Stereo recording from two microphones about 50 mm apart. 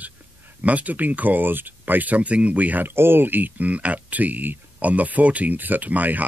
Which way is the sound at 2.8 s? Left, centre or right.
Right.